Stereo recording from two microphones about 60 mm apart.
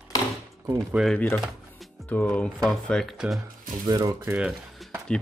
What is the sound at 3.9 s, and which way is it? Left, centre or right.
Speech, right.